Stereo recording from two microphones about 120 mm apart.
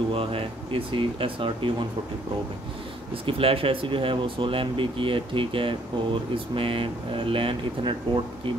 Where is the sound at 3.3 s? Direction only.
50° right (ahead or behind).